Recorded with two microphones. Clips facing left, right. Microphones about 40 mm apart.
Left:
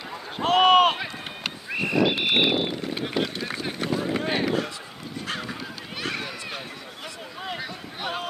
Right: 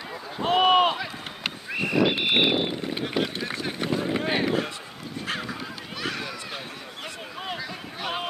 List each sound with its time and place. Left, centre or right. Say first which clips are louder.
0.5 s run: left 2 dB; left
1.4 s a sound: even; centre
5.2 s honk: right 1 dB; centre